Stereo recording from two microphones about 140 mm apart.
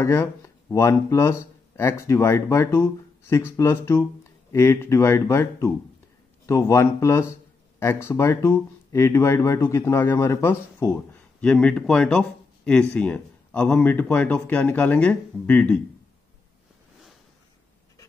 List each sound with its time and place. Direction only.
0.0 s speech: 20° left (ahead or behind)
11.4 s speech: 10° left (ahead or behind)